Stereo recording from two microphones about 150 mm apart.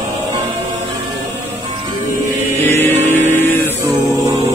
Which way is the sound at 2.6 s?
15° left (ahead or behind).